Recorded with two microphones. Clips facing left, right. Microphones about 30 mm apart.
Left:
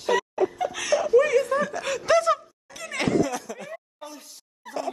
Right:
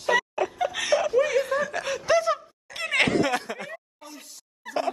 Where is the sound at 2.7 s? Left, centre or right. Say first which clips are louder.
Right 3 dB; right.